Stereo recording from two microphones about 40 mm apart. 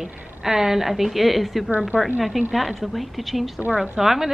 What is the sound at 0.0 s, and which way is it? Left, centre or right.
A woman's voice, centre.